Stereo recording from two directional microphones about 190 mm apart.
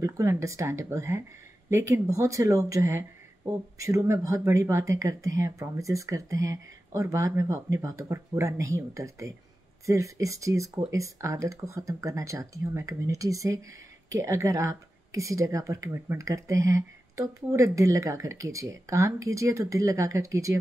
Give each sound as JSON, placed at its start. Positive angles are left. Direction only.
{"t": 0.0, "sound": "speech", "side_deg": -15}